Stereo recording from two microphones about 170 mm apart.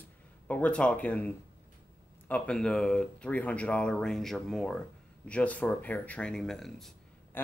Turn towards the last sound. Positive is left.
turn(degrees=10)  # may be behind; listen again after turning